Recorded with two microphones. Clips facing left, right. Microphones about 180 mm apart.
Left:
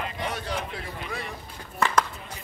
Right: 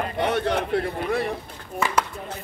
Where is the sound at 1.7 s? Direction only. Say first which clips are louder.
Even; 10° right (ahead or behind).